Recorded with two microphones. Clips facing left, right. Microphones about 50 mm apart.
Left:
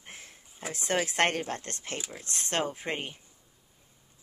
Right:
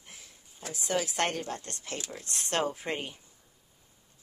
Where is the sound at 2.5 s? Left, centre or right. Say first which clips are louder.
Right 1 dB; left.